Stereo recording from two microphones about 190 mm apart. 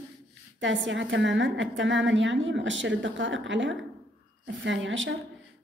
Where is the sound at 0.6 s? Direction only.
80° right.